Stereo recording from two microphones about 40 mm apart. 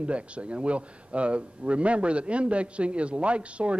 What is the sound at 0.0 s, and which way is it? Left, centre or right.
A man's voice, right.